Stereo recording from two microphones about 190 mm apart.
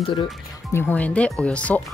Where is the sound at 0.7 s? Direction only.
10° left (ahead or behind).